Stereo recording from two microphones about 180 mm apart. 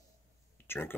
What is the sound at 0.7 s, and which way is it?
Speech, 10° left (ahead or behind).